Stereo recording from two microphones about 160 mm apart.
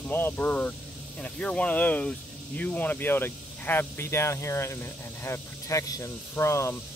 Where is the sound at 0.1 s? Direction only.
15° left (ahead or behind).